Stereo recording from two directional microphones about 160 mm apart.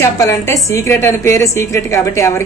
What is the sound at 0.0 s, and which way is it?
A woman's voice, 15° left (ahead or behind).